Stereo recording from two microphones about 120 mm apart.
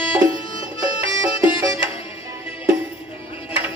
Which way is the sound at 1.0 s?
45° left (ahead or behind).